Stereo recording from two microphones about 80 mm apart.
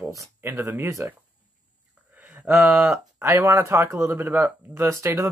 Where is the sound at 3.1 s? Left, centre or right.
Right.